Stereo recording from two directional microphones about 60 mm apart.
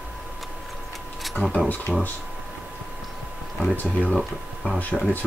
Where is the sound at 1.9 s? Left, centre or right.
Centre.